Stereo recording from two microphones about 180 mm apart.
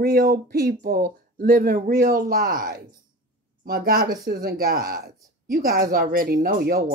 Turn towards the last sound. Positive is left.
turn(degrees=-55)  # may be behind; listen again after turning